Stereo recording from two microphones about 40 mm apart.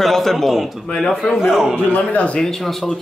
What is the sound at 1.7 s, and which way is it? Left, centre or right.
Speech, left.